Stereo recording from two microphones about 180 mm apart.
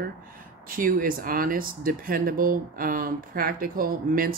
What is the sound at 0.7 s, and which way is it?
Speech, 50° right (ahead or behind).